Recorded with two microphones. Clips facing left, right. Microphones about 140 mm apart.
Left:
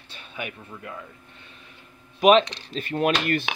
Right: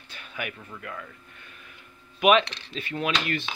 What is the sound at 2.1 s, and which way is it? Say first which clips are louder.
Speech: left 4 dB; 35° left (ahead or behind).